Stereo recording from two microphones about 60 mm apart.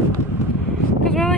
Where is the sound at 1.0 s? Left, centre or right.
Centre.